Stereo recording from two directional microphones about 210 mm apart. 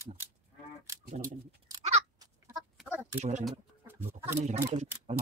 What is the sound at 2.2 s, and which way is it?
Chicken, 15° right (ahead or behind).